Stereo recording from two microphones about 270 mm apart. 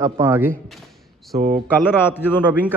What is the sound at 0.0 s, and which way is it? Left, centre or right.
Speech, centre.